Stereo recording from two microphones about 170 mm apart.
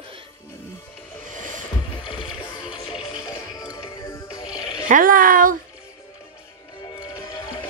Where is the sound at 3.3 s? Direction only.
20° left (ahead or behind).